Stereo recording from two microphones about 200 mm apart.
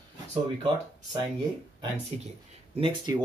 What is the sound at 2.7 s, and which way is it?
Speech, 25° right (ahead or behind).